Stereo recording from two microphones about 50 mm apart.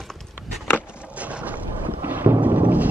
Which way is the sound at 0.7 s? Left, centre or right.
Right.